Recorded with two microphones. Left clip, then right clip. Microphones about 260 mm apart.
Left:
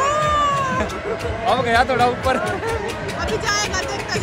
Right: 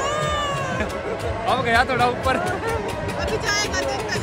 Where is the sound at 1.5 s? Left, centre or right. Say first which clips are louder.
Left 2 dB; centre.